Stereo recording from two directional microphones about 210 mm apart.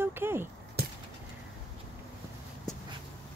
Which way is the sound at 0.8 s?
50° right (ahead or behind).